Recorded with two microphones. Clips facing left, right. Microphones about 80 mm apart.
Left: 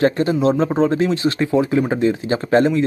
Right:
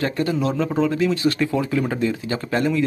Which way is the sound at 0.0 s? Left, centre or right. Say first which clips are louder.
Left 6 dB; left.